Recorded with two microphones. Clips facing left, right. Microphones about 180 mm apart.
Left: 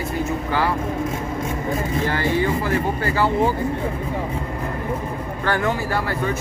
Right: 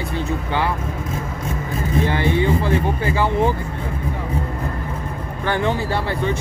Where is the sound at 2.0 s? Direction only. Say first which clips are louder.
Right 2 dB; 20° right (ahead or behind).